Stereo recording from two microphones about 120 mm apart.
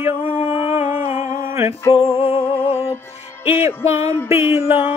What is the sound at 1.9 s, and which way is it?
Music, 55° left (ahead or behind).